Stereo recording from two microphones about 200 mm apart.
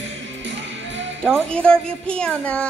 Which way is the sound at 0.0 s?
65° right (ahead or behind).